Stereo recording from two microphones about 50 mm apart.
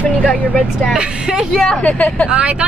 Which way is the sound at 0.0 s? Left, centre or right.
Left.